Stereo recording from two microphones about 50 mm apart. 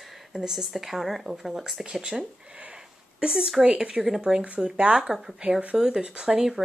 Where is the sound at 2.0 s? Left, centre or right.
Right.